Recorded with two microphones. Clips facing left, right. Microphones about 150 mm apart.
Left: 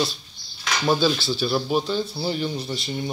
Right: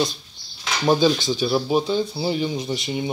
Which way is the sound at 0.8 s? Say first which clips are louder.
Right 3 dB; 15° right (ahead or behind).